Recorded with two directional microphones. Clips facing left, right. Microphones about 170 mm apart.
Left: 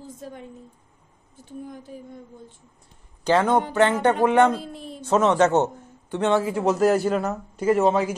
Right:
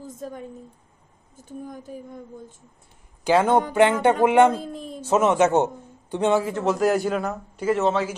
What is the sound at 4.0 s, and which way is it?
Speech, 10° right (ahead or behind).